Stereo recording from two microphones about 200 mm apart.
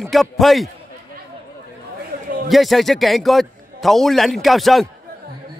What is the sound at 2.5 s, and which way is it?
A man's voice, centre (ahead or behind).